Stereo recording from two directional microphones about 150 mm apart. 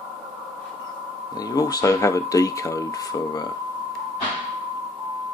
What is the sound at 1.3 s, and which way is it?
Speech, 25° left (ahead or behind).